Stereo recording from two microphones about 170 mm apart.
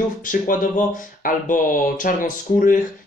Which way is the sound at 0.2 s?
50° left (ahead or behind).